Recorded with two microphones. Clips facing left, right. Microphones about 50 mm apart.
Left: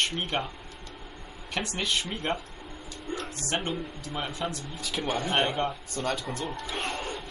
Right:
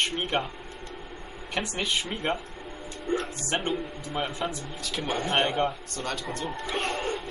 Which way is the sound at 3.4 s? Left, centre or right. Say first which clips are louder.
Right 2 dB; centre.